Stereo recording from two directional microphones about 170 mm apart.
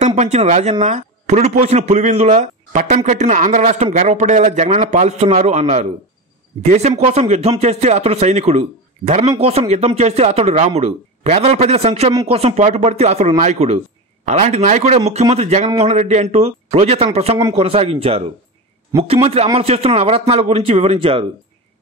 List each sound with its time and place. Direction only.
0.0 s speech: 40° right (ahead or behind)
18.9 s a man's voice: 15° right (ahead or behind)
19.2 s speech: 35° right (ahead or behind)